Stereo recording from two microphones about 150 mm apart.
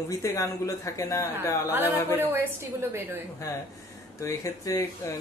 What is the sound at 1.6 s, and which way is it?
A woman's voice, 15° right (ahead or behind).